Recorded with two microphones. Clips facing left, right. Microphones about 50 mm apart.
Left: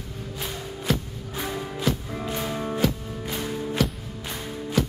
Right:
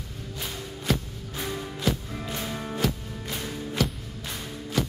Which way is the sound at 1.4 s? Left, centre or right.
Centre.